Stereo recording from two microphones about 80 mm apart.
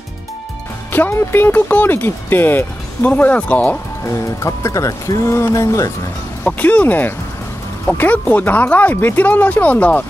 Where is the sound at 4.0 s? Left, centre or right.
Left.